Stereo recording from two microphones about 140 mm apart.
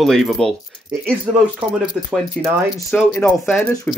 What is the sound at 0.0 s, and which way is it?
Speech, centre (ahead or behind).